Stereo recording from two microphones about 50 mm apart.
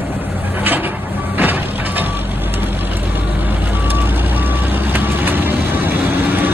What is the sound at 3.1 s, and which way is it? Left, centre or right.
Reversing beeps, right.